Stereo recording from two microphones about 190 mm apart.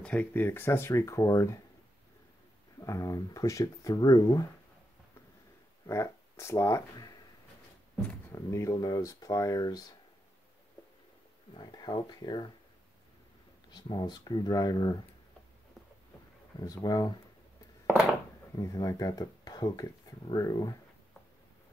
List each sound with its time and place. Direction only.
0.0 s speech: 10° left (ahead or behind)
2.8 s speech: 15° left (ahead or behind)
5.9 s speech: 15° left (ahead or behind)
11.5 s speech: 20° left (ahead or behind)
13.7 s speech: 25° left (ahead or behind)
16.5 s speech: 20° left (ahead or behind)
18.6 s speech: 20° left (ahead or behind)